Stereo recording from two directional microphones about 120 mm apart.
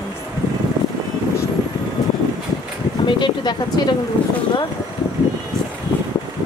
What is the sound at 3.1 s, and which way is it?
Speech, 40° left (ahead or behind).